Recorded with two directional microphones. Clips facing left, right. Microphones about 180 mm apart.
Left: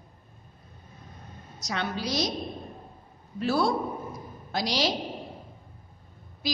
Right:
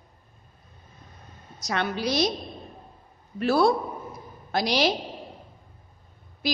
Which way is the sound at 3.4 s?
60° right (ahead or behind).